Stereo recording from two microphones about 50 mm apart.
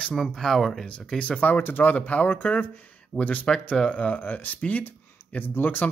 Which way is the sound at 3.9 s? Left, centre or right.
Left.